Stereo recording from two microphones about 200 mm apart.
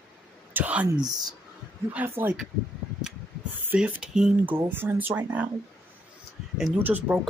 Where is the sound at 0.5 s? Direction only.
5° right (ahead or behind).